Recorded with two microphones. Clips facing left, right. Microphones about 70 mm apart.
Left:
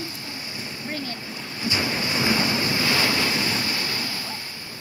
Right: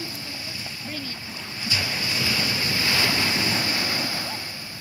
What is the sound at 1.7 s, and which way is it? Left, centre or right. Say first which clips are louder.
Waves: left 3 dB; left.